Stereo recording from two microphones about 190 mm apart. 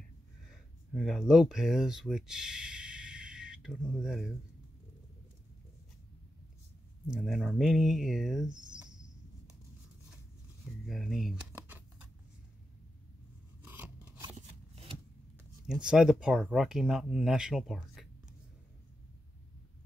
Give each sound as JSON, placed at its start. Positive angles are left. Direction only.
{"t": 0.5, "sound": "speech", "side_deg": 0}
{"t": 7.1, "sound": "speech", "side_deg": 0}
{"t": 8.5, "sound": "speech", "side_deg": -25}
{"t": 10.9, "sound": "speech", "side_deg": 0}
{"t": 13.7, "sound": "scissors", "side_deg": -10}
{"t": 15.6, "sound": "speech", "side_deg": -5}